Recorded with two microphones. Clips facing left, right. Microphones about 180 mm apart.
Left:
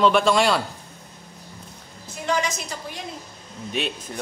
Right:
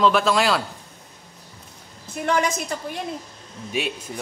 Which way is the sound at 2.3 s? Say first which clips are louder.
Right 3 dB; 55° right (ahead or behind).